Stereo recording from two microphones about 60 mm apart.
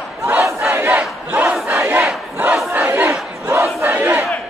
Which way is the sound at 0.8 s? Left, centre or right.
Right.